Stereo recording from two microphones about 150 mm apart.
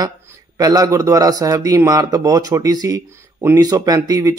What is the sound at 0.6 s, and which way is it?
A man's voice, 25° right (ahead or behind).